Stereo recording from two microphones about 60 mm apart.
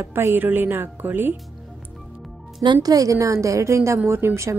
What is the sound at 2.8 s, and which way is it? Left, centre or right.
A woman's voice, right.